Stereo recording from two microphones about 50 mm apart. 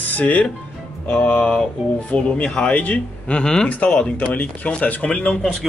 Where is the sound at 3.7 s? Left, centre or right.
Left.